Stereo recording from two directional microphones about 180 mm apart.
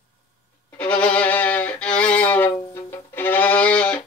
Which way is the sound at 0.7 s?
5° left (ahead or behind).